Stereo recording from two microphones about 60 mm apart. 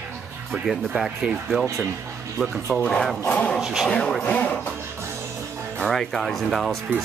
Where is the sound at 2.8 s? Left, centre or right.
Centre.